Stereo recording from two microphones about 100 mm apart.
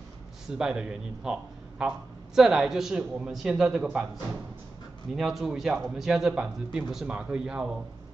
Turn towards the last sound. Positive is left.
turn(degrees=-5)  # may be behind; listen again after turning